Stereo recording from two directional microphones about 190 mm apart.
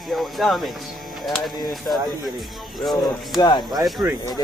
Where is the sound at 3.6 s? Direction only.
Centre (ahead or behind).